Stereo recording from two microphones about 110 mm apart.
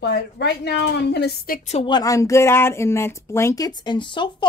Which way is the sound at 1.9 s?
35° left (ahead or behind).